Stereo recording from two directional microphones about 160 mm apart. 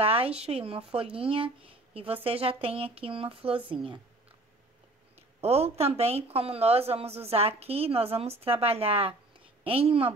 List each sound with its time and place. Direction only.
0.0 s a woman's voice: 35° right (ahead or behind)
5.4 s a woman's voice: 40° right (ahead or behind)